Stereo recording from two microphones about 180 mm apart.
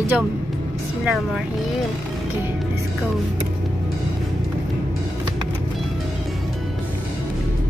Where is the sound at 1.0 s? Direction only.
Centre (ahead or behind).